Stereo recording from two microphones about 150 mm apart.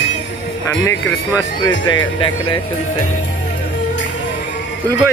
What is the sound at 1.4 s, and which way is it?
Speech, 25° left (ahead or behind).